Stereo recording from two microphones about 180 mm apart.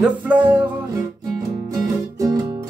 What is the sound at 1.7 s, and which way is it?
Music, 20° right (ahead or behind).